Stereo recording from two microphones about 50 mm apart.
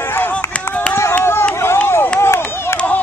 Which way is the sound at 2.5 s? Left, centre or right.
Left.